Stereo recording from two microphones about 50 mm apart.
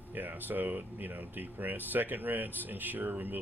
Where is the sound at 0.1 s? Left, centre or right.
Right.